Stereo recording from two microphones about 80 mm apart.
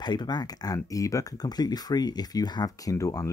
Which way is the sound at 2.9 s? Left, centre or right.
Left.